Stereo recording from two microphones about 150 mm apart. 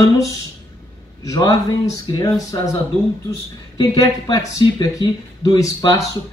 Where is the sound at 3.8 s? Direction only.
25° left (ahead or behind).